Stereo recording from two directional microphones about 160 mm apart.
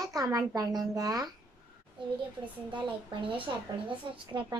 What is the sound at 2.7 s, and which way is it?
A woman's voice, 30° right (ahead or behind).